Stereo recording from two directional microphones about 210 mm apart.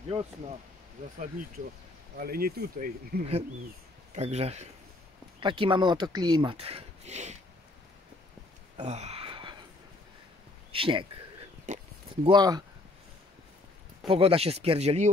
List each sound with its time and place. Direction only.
0.1 s speech: 25° right (ahead or behind)
2.1 s speech: 45° right (ahead or behind)
4.1 s speech: 30° right (ahead or behind)
8.7 s a sound: 30° right (ahead or behind)
10.7 s speech: 25° right (ahead or behind)
11.6 s oink: 35° right (ahead or behind)
12.3 s speech: 20° right (ahead or behind)
14.0 s speech: 25° right (ahead or behind)